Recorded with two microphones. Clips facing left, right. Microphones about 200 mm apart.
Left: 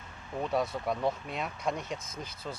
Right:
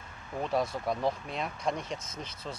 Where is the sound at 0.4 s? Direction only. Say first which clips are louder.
Even; centre (ahead or behind).